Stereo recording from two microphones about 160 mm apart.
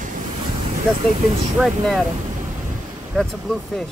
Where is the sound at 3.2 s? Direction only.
5° left (ahead or behind).